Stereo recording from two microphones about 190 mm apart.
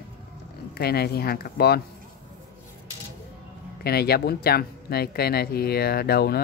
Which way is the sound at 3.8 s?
55° left (ahead or behind).